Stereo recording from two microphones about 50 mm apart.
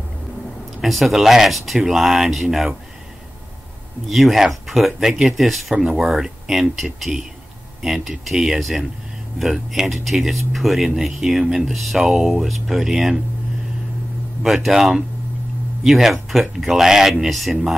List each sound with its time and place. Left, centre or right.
0.7 s speech: centre
4.1 s speech: centre
14.4 s speech: centre